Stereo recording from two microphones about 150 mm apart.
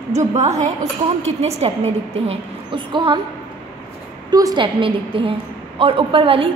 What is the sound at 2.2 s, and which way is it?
Speech, 35° right (ahead or behind).